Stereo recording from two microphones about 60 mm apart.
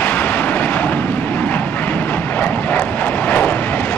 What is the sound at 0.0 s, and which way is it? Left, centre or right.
Vehicle, left.